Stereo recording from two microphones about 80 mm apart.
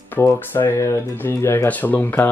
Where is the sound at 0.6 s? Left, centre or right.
Left.